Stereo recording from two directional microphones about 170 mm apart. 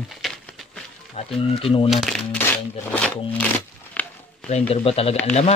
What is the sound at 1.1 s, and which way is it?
Speech, 35° left (ahead or behind).